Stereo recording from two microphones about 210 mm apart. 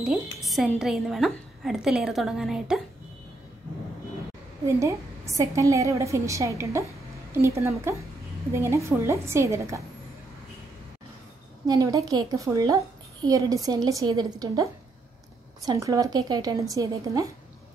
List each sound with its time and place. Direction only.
0.0 s a woman's voice: centre (ahead or behind)
4.7 s a woman's voice: 15° right (ahead or behind)
11.6 s a child's voice: 15° right (ahead or behind)